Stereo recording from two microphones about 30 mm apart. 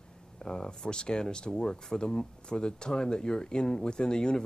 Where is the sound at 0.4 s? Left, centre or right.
Left.